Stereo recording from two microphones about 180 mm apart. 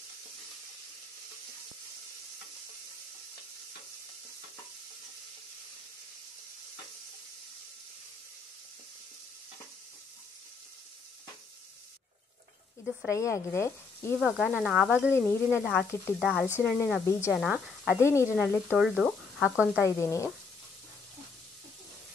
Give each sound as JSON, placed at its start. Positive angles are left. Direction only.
{"t": 13.1, "sound": "speech", "side_deg": 15}
{"t": 14.2, "sound": "speech", "side_deg": -5}
{"t": 15.1, "sound": "speech", "side_deg": 15}
{"t": 17.0, "sound": "speech", "side_deg": 15}
{"t": 17.3, "sound": "speech", "side_deg": 0}
{"t": 17.9, "sound": "speech", "side_deg": 15}
{"t": 18.7, "sound": "speech", "side_deg": -5}
{"t": 19.8, "sound": "speech", "side_deg": 15}